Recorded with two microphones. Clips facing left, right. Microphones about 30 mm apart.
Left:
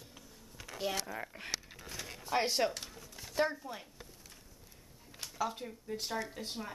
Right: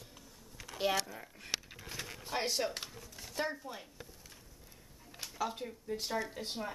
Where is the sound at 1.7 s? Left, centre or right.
Centre.